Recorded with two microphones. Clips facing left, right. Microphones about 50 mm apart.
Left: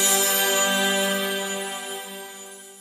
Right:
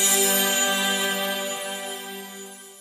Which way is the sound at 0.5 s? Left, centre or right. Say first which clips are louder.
Left 2 dB; left.